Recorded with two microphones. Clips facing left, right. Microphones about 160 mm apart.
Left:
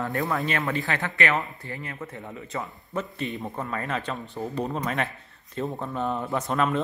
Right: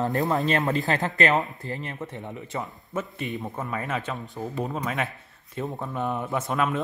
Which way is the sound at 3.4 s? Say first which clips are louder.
Even; 5° right (ahead or behind).